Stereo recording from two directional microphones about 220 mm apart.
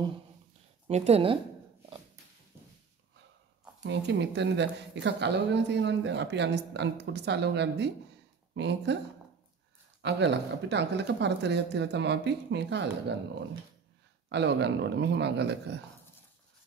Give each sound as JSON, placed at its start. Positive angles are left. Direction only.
{"t": 0.8, "sound": "speech", "side_deg": -30}
{"t": 2.5, "sound": "a sound", "side_deg": -10}
{"t": 3.8, "sound": "speech", "side_deg": -50}
{"t": 10.0, "sound": "speech", "side_deg": -50}
{"t": 14.3, "sound": "speech", "side_deg": -50}